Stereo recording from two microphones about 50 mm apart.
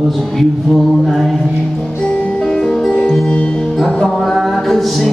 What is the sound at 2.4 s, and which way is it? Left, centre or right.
Music, centre.